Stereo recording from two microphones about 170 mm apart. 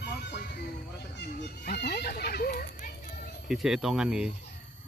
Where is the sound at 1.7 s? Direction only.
75° left (ahead or behind); by 2.9 s 60° left (ahead or behind).